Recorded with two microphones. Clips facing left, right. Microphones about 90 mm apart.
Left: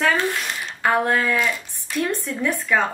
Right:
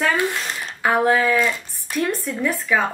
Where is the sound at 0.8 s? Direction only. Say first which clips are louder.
Right 2 dB; 5° right (ahead or behind).